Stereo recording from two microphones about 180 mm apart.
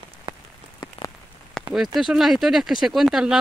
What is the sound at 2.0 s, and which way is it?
Speech, centre (ahead or behind).